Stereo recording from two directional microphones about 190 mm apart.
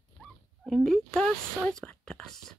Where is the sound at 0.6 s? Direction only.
Centre (ahead or behind).